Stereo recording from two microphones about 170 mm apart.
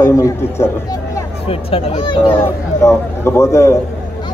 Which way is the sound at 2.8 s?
15° left (ahead or behind).